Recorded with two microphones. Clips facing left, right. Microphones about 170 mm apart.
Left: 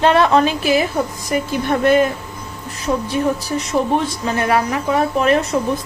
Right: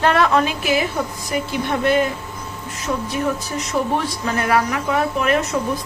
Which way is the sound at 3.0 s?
30° left (ahead or behind).